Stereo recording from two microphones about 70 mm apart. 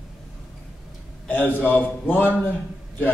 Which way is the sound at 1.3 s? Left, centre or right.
Left.